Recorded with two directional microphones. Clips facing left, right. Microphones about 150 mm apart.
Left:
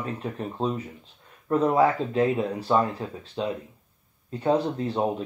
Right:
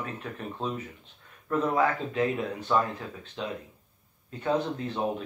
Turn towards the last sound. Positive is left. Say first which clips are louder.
# left 4 dB
turn(degrees=35)  # may be behind; listen again after turning